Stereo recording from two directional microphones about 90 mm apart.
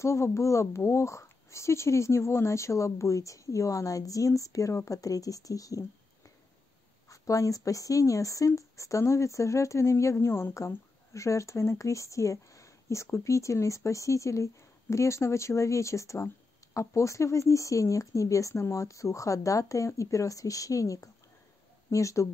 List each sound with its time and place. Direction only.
0.0 s speech: 30° left (ahead or behind)